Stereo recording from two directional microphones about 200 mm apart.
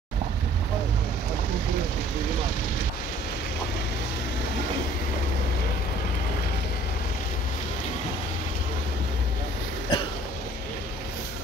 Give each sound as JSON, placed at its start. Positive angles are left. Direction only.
{"t": 9.9, "sound": "throat clearing", "side_deg": 25}